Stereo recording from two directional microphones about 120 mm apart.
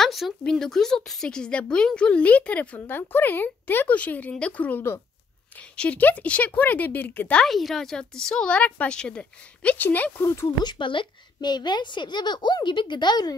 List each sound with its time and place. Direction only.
0.0 s a sound: centre (ahead or behind)
0.4 s speech: 5° left (ahead or behind); by 10.5 s 20° left (ahead or behind)
10.6 s a woman's voice: 40° left (ahead or behind)